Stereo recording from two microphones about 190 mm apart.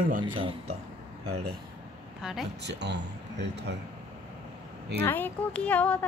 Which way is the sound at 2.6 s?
65° right (ahead or behind).